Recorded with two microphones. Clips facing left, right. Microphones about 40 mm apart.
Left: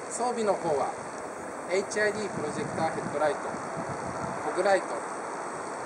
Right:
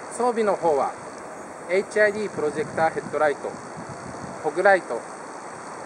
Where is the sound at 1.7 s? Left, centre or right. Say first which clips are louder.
Right 7 dB; centre.